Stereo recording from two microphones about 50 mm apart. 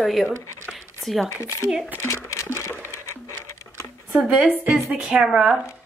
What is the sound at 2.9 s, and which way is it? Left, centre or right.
Music, left.